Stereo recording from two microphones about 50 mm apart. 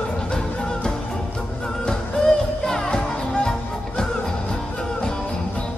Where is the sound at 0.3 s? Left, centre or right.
Centre.